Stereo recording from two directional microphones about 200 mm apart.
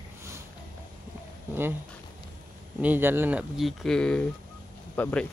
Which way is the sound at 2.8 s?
10° right (ahead or behind).